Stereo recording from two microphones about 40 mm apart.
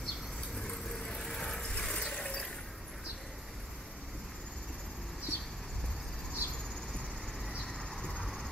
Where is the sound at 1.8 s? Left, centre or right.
Centre.